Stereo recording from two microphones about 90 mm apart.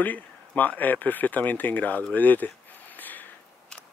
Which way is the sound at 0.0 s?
20° left (ahead or behind).